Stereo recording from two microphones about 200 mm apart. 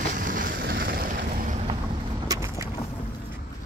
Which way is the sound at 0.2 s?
45° right (ahead or behind).